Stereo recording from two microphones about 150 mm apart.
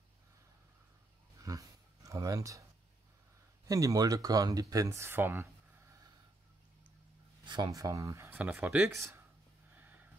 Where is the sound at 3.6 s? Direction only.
25° right (ahead or behind).